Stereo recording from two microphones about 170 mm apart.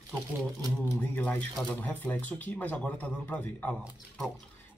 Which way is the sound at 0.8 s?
10° left (ahead or behind).